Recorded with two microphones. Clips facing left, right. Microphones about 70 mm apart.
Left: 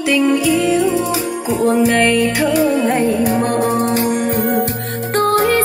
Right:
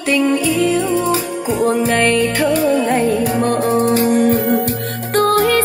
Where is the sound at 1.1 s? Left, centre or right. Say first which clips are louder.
Right 1 dB; centre.